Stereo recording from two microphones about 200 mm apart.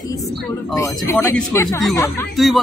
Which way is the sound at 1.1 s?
15° left (ahead or behind).